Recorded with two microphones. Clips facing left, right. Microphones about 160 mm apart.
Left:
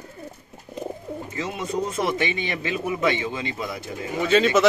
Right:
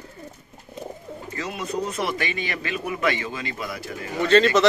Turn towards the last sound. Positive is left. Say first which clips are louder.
# right 1 dB
turn(degrees=5)  # may be behind; listen again after turning